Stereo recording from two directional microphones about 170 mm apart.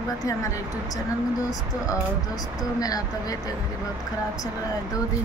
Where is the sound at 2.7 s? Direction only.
20° left (ahead or behind).